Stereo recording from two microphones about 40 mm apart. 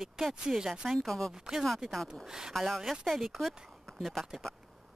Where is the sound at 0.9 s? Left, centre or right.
Centre.